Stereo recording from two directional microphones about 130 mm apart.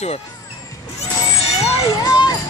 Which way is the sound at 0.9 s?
55° left (ahead or behind).